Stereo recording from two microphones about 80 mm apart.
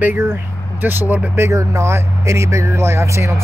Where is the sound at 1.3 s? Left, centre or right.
Right.